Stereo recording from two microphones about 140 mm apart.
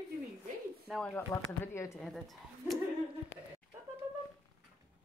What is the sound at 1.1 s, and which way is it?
Speech, 20° left (ahead or behind).